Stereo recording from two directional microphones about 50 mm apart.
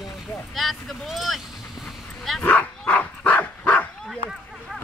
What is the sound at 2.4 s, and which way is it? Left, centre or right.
Speech, left.